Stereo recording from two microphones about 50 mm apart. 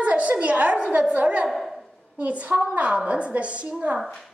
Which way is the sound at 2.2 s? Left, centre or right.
Right.